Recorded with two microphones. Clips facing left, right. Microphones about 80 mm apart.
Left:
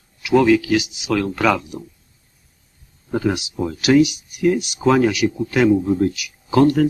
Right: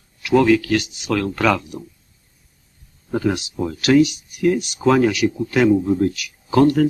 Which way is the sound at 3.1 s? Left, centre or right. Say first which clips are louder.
Even; centre.